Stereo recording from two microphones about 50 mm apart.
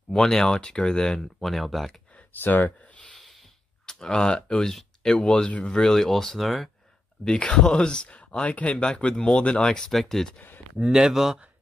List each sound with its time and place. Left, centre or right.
0.1 s speech: centre
1.4 s speech: centre
2.4 s speech: left
3.8 s speech: centre
7.2 s speech: centre
9.8 s speech: centre
10.8 s speech: centre